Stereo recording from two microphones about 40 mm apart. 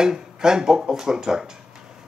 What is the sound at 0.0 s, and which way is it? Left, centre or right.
Speech, centre.